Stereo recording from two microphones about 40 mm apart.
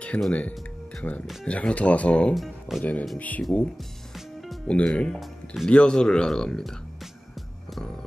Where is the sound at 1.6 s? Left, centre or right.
Left.